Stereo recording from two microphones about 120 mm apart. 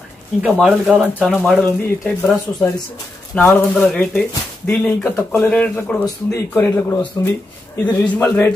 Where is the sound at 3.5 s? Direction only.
10° left (ahead or behind).